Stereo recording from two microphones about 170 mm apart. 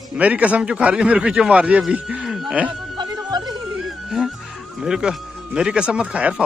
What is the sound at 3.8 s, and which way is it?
Music, centre (ahead or behind).